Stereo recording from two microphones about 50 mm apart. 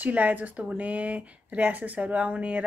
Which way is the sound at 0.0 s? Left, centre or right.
Right.